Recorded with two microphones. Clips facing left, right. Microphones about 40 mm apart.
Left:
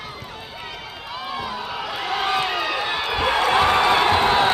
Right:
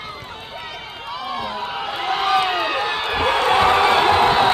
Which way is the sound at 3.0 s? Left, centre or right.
Right.